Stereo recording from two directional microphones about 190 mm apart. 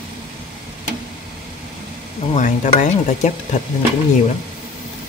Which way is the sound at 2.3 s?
40° left (ahead or behind).